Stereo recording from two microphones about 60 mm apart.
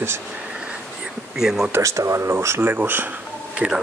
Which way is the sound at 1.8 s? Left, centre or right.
Right.